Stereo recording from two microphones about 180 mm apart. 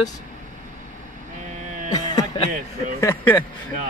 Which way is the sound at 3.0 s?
15° left (ahead or behind).